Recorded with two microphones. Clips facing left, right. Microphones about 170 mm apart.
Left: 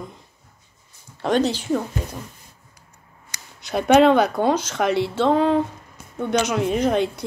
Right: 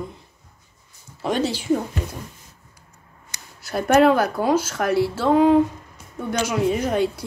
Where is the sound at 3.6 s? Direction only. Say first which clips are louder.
Left 1 dB; 5° right (ahead or behind).